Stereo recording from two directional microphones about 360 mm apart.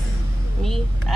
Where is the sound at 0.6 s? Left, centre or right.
Centre.